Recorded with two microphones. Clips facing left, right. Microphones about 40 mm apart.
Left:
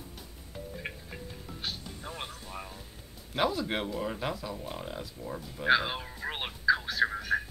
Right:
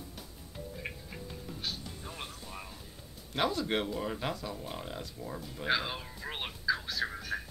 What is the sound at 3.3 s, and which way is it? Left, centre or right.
Speech, centre.